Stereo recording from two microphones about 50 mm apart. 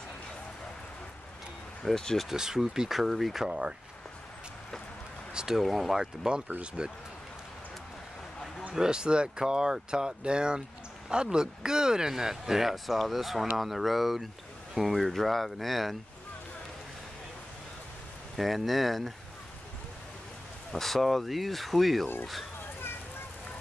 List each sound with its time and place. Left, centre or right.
1.9 s speech: centre
2.2 s speech: centre
3.4 s speech: centre
5.3 s a sound: centre
5.6 s speech: centre
6.2 s speech: centre
8.7 s speech: centre
18.3 s speech: centre
20.7 s speech: centre